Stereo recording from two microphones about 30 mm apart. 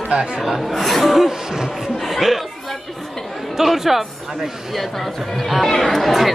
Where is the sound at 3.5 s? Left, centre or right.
Centre.